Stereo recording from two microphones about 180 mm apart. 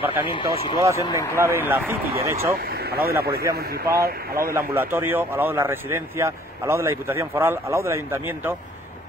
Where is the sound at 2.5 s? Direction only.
60° right (ahead or behind).